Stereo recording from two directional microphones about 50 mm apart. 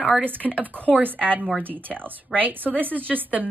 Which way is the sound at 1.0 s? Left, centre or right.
Right.